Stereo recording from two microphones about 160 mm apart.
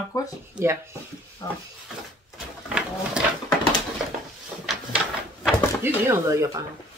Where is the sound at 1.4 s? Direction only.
25° left (ahead or behind).